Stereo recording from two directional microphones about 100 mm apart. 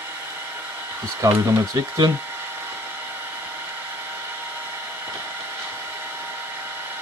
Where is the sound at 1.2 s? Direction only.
30° right (ahead or behind).